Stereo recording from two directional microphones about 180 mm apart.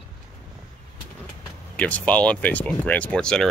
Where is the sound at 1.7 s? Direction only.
5° left (ahead or behind).